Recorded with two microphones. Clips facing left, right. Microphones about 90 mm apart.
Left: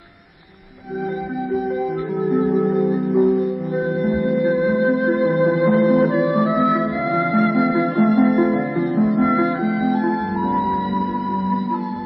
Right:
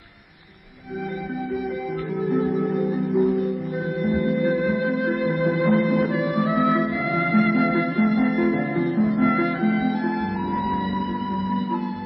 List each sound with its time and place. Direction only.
2.2 s music: centre (ahead or behind)
4.9 s music: 40° left (ahead or behind)
5.4 s music: centre (ahead or behind)
5.9 s music: 40° left (ahead or behind)
6.5 s music: centre (ahead or behind)
7.2 s music: 35° left (ahead or behind)
8.2 s music: centre (ahead or behind)
9.8 s music: 35° left (ahead or behind)